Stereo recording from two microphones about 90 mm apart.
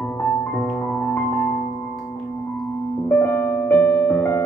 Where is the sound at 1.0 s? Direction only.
20° left (ahead or behind).